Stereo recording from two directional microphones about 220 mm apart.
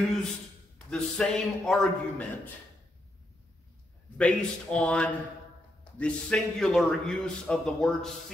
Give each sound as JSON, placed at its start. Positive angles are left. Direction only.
{"t": 0.7, "sound": "a man's voice", "side_deg": 5}
{"t": 4.2, "sound": "a man's voice", "side_deg": 5}